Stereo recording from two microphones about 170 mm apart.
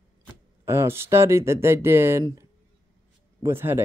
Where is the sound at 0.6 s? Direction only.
15° right (ahead or behind).